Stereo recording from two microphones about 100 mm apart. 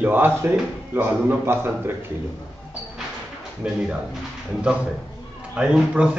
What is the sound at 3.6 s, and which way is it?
Speech, 10° right (ahead or behind).